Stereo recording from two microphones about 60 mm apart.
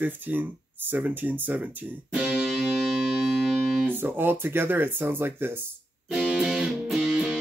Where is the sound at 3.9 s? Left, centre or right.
Right.